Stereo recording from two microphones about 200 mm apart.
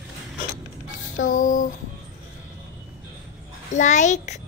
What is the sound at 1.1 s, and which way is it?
Speech, 40° left (ahead or behind).